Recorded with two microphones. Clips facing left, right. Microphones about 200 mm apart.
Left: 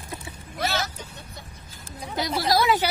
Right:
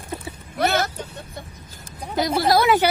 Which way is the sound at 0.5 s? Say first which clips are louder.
Right 7 dB; 55° right (ahead or behind).